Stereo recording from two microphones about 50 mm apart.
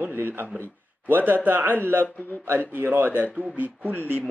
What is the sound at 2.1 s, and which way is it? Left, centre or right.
Speech, left.